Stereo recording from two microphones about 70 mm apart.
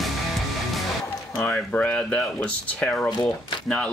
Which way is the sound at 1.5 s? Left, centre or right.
Centre.